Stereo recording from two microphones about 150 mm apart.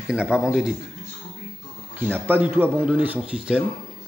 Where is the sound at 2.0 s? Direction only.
15° right (ahead or behind).